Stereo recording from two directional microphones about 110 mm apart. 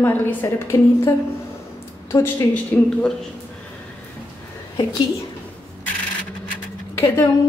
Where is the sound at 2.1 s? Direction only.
25° left (ahead or behind).